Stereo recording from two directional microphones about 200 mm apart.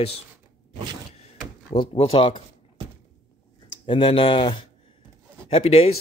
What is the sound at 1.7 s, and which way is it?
Speech, 30° left (ahead or behind).